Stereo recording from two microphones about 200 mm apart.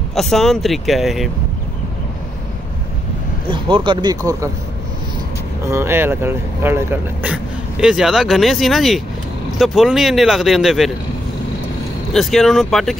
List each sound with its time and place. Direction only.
0.1 s speech: centre (ahead or behind)
3.4 s speech: 25° right (ahead or behind)
5.7 s speech: 10° right (ahead or behind)
12.1 s speech: centre (ahead or behind)